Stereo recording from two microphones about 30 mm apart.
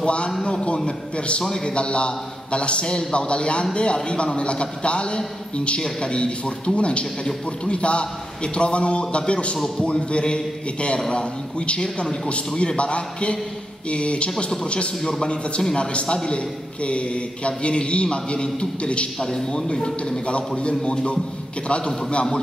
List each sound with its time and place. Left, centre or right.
0.0 s a man's voice: left
15.0 s a man's voice: centre
15.7 s a man's voice: left
19.1 s a man's voice: centre; by 22.2 s left